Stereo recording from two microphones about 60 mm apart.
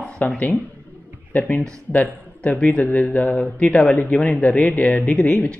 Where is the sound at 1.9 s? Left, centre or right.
Left.